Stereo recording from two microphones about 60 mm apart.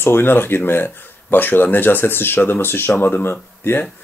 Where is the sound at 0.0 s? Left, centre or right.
Left.